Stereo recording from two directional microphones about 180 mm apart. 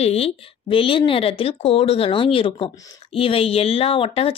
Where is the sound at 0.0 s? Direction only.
35° left (ahead or behind).